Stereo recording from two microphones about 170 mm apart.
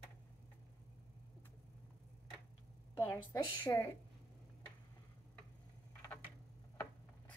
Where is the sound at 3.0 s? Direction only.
20° left (ahead or behind).